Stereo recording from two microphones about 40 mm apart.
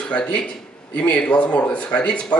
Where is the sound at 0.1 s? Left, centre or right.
Left.